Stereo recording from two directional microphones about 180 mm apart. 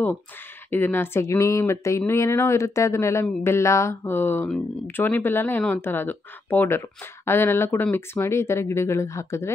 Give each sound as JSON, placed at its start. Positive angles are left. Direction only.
{"t": 0.7, "sound": "speech", "side_deg": 10}